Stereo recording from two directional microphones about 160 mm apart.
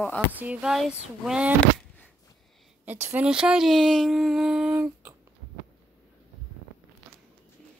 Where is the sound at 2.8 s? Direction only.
10° right (ahead or behind).